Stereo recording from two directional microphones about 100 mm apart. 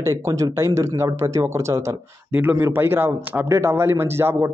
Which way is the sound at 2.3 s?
20° right (ahead or behind).